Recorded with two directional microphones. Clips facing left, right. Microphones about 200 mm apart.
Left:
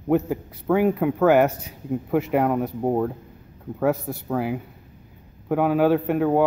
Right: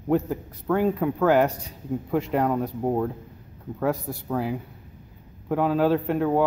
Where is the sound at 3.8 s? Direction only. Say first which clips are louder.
Left 3 dB; 5° left (ahead or behind).